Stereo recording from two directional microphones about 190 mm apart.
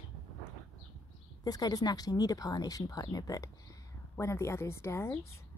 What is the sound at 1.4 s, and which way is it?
A woman's voice, 20° left (ahead or behind).